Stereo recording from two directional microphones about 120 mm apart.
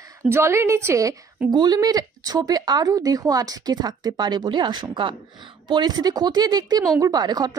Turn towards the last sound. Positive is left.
turn(degrees=-35)  # may be behind; listen again after turning